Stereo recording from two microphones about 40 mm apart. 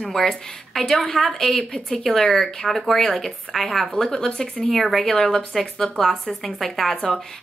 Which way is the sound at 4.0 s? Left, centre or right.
Centre.